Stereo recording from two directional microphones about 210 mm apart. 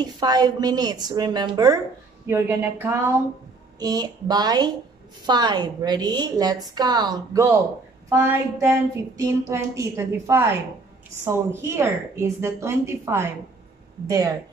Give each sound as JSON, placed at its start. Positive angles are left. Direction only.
{"t": 0.0, "sound": "a woman's voice", "side_deg": -20}